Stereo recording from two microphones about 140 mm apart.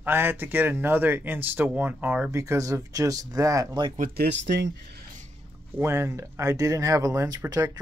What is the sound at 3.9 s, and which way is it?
Speech, 90° right.